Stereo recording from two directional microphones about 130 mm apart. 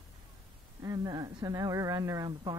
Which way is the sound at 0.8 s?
30° right (ahead or behind).